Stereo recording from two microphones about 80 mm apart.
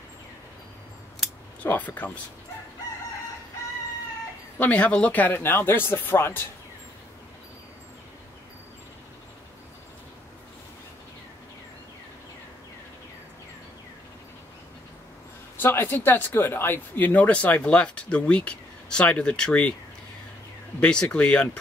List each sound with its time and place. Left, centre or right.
1.6 s speech: left
4.6 s speech: centre
15.5 s speech: left
20.8 s speech: centre